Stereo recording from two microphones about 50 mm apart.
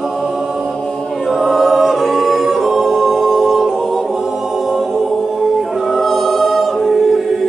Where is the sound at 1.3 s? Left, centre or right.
Centre.